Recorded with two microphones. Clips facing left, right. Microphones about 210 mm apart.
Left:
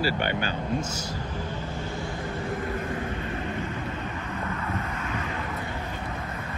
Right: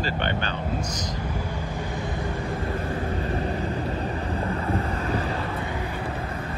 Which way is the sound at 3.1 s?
35° right (ahead or behind).